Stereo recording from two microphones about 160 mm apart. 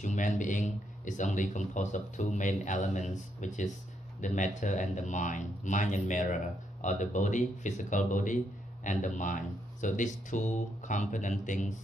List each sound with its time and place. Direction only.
0.0 s speech: 50° left (ahead or behind)